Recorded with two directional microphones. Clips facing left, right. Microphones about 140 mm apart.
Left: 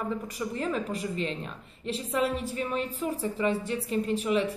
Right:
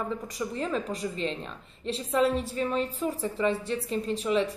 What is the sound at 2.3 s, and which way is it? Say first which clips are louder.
Speech: right 2 dB; 35° right (ahead or behind).